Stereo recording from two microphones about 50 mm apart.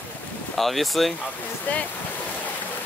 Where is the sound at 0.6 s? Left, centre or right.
Centre.